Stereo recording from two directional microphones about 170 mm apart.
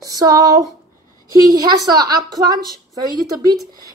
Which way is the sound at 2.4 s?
20° right (ahead or behind).